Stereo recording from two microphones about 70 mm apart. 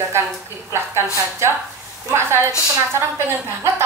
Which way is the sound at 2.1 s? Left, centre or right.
Right.